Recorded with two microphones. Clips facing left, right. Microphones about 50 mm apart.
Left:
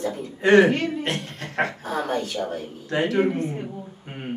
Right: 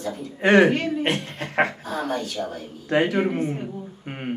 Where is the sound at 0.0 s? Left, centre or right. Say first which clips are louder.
Left 2 dB; left.